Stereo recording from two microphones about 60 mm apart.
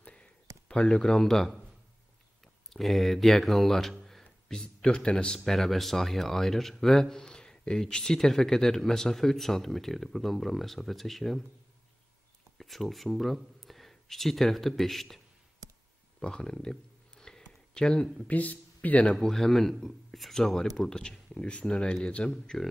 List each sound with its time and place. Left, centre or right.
0.0 s a sound: left
0.7 s a man's voice: centre
12.5 s speech: centre
16.2 s a sound: centre
18.0 s a man's voice: centre
18.3 s speech: left
19.1 s a man's voice: centre
22.3 s speech: centre